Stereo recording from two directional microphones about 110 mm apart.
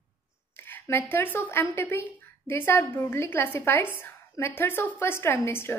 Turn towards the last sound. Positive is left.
turn(degrees=20)  # may be behind; listen again after turning